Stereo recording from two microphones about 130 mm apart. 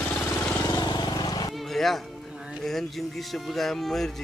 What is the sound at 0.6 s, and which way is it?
Vehicle, 35° left (ahead or behind).